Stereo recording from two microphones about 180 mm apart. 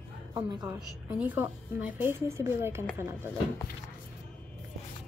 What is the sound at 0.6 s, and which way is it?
A woman's voice, 10° right (ahead or behind).